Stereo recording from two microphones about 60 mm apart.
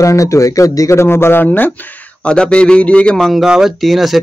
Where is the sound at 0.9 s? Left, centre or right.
Left.